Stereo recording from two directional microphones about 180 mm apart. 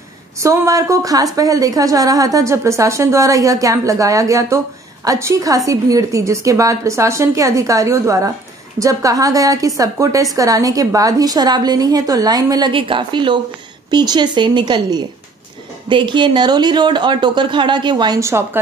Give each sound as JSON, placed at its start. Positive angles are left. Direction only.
{"t": 0.4, "sound": "a woman's voice", "side_deg": -20}